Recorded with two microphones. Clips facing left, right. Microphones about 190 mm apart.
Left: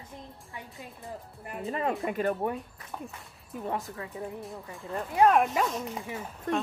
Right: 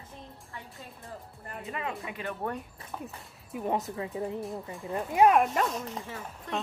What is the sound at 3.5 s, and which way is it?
A woman's voice, 15° right (ahead or behind).